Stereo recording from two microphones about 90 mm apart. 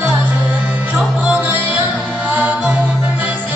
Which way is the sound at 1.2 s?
15° right (ahead or behind).